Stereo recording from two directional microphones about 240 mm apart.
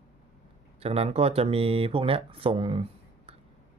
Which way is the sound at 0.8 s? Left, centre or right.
Right.